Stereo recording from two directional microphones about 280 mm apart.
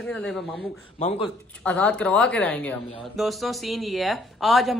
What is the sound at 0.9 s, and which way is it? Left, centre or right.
Speech, left.